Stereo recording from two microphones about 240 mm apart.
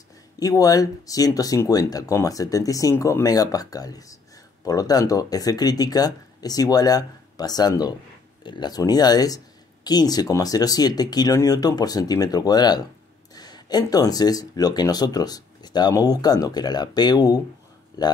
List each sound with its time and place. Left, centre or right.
0.4 s speech: centre